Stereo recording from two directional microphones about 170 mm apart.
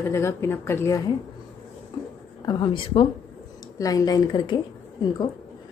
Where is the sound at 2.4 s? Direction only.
25° left (ahead or behind).